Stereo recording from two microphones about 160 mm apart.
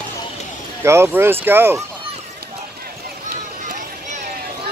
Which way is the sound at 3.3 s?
60° right (ahead or behind).